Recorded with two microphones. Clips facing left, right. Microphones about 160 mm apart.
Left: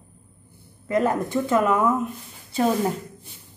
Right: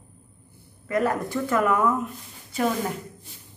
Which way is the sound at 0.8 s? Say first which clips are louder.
Left 2 dB; 25° left (ahead or behind).